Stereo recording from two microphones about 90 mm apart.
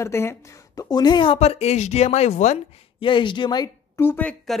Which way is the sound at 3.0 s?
65° left (ahead or behind).